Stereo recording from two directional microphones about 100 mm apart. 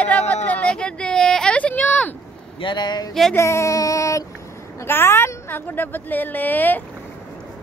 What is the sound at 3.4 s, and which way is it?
A woman's voice, 30° left (ahead or behind).